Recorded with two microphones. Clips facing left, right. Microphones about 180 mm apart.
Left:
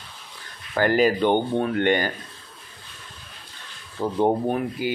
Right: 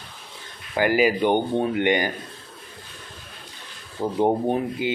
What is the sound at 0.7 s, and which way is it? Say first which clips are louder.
Speech: even; 10° right (ahead or behind).